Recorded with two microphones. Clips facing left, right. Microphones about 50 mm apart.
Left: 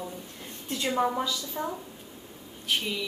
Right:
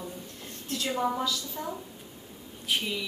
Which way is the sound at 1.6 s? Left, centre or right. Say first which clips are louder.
Left 6 dB; left.